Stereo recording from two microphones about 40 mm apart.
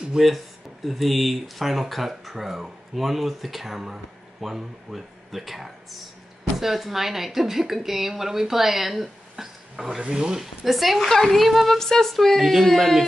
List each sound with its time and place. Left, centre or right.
0.2 s speech: centre
0.8 s speech: centre
9.9 s speech: right
10.4 s speech: centre
11.8 s a sound: centre
12.4 s speech: centre